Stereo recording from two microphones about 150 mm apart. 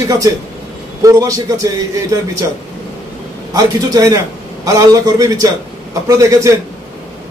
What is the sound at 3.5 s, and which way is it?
A man's voice, 25° right (ahead or behind).